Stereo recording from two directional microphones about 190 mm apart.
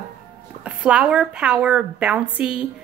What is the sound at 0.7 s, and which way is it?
A woman's voice, 5° right (ahead or behind).